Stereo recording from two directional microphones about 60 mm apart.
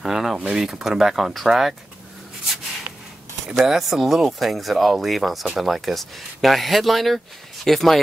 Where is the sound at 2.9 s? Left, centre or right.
Right.